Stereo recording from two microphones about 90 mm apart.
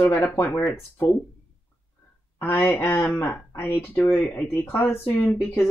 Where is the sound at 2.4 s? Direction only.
25° left (ahead or behind).